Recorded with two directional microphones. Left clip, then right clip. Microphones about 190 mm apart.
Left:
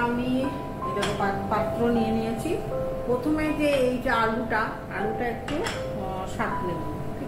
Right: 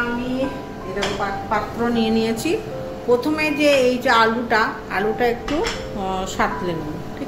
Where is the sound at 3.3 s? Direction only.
50° right (ahead or behind).